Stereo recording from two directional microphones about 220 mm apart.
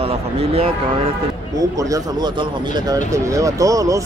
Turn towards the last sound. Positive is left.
turn(degrees=-15)  # may be behind; listen again after turning